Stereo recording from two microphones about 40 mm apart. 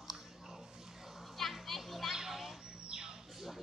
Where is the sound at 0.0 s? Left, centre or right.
Centre.